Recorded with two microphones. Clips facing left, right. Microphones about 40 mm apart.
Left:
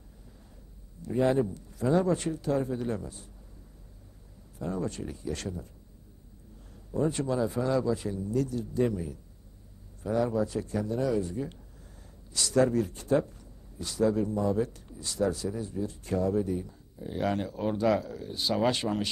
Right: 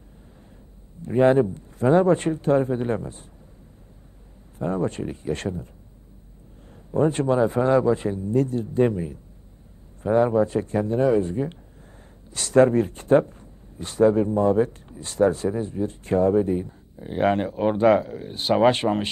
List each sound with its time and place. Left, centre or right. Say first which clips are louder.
1.0 s speech: right 8 dB; right
4.6 s speech: right 8 dB; right
6.9 s speech: right 8 dB; right